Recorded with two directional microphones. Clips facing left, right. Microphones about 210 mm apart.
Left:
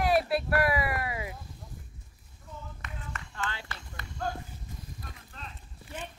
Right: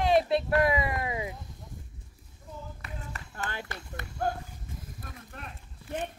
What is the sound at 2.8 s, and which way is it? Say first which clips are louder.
Run: right 1 dB; 40° right (ahead or behind).